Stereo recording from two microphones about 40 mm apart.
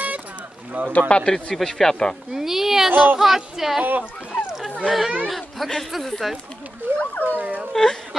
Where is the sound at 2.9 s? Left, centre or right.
Right.